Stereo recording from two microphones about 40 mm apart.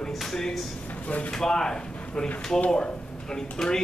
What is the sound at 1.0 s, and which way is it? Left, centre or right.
Speech, left.